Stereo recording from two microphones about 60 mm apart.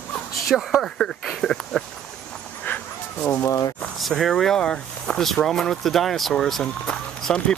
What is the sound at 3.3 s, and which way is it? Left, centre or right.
Speech, left.